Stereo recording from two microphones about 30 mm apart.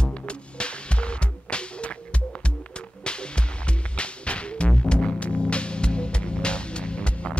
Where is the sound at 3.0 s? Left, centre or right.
Left.